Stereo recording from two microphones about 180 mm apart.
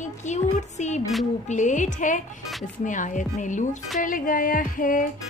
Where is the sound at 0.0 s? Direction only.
40° left (ahead or behind).